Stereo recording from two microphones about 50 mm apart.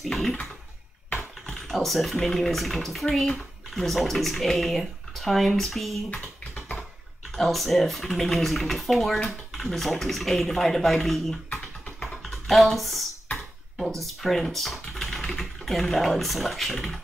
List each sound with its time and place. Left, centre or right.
0.1 s toilet flush: centre
1.4 s speech: centre
7.3 s speech: centre
12.2 s a sound: centre
13.7 s speech: centre